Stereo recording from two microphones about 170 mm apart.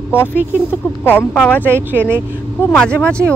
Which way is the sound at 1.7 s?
10° right (ahead or behind).